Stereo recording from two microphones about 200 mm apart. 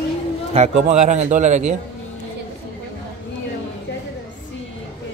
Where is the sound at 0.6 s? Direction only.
35° right (ahead or behind).